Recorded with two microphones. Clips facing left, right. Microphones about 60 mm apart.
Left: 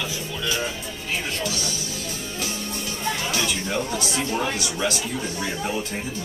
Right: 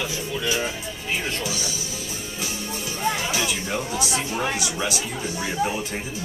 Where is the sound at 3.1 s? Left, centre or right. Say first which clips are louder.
Even; centre.